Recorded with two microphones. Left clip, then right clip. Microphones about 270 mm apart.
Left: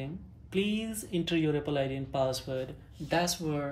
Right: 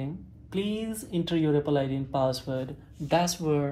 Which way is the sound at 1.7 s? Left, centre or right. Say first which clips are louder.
Right 4 dB; right.